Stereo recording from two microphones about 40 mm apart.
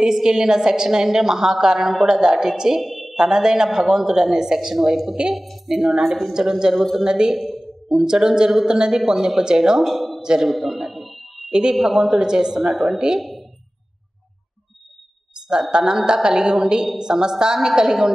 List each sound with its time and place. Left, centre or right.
0.0 s a woman's voice: centre
2.8 s a sound: centre
3.2 s a woman's voice: centre
5.7 s a woman's voice: centre
6.7 s speech: centre
7.0 s a woman's voice: centre
7.3 s speech: centre
7.9 s a woman's voice: centre
10.2 s a man's voice: centre
10.5 s a sound: centre
11.7 s a woman's voice: centre
13.2 s a sound: centre
15.7 s a woman's voice: centre